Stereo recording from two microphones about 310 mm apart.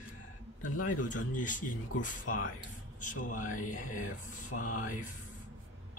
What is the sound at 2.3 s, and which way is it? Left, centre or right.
Speech, left.